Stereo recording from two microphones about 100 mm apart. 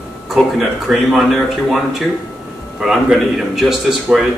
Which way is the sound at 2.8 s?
5° right (ahead or behind).